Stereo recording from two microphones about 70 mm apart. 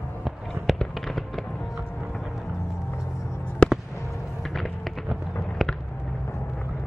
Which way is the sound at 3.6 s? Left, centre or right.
Centre.